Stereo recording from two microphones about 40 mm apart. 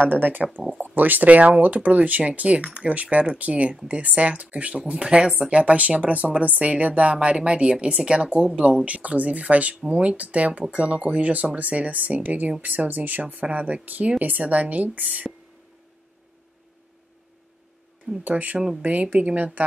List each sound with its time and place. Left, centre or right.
0.1 s speech: right
5.6 s speech: right
18.2 s speech: right